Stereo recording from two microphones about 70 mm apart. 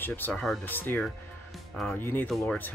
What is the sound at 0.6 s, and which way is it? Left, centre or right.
Speech, left.